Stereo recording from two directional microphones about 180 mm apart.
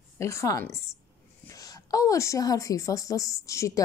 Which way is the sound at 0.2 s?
15° left (ahead or behind).